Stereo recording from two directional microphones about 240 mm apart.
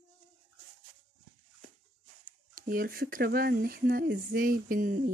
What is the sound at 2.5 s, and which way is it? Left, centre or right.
Speech, right.